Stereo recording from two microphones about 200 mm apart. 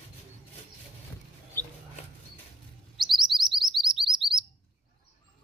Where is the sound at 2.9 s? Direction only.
Centre (ahead or behind).